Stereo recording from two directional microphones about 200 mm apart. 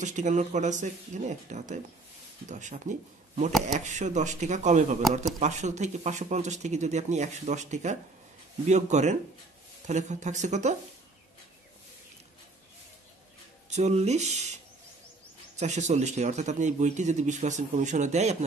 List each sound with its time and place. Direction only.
0.0 s speech: 35° right (ahead or behind)
13.7 s speech: 35° right (ahead or behind)
15.6 s speech: 35° right (ahead or behind)